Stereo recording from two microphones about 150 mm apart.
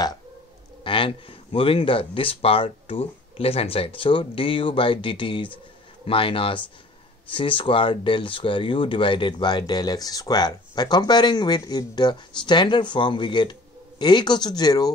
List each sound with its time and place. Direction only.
0.8 s speech: 35° left (ahead or behind)